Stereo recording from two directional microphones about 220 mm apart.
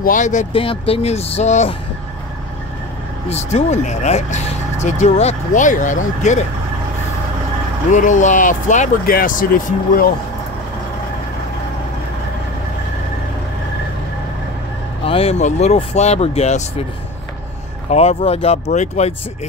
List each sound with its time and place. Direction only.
0.0 s speech: 35° left (ahead or behind)
3.3 s speech: 30° left (ahead or behind)
7.9 s speech: 35° left (ahead or behind)
15.0 s speech: 25° left (ahead or behind)
17.8 s speech: 30° left (ahead or behind)